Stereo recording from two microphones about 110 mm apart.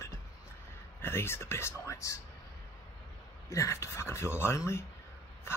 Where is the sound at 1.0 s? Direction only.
20° left (ahead or behind).